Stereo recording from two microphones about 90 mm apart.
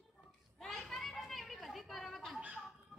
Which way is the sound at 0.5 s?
Centre (ahead or behind).